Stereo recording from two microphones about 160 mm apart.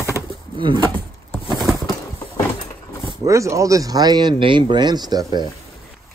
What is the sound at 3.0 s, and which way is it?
Speech, 20° right (ahead or behind).